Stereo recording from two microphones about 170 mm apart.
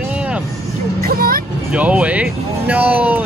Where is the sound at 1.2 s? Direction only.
60° right (ahead or behind).